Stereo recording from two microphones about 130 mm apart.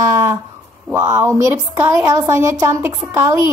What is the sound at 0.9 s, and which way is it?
A woman's voice, 20° right (ahead or behind).